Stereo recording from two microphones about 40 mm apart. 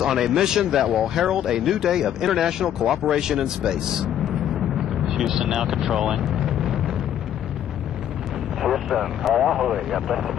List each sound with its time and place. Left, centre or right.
0.0 s a man's voice: centre
6.2 s vehicle: centre
8.6 s a man's voice: centre